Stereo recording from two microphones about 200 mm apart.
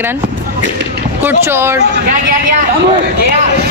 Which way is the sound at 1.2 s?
10° right (ahead or behind).